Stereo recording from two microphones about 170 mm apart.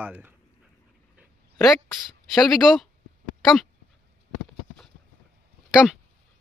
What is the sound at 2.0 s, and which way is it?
Speech, centre (ahead or behind).